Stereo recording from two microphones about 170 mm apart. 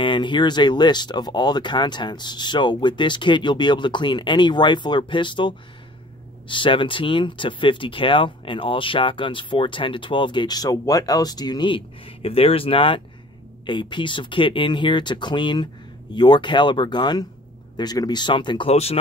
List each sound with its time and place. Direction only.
0.0 s speech: 30° left (ahead or behind)